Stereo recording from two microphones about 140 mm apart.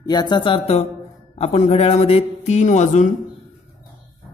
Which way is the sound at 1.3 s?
50° left (ahead or behind).